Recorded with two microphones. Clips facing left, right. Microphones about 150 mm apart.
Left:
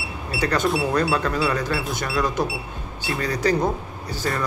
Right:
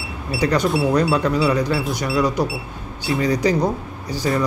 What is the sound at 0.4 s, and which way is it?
Speech, 15° right (ahead or behind).